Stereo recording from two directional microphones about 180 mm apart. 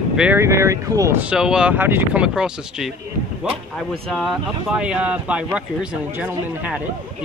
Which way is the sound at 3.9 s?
Centre (ahead or behind).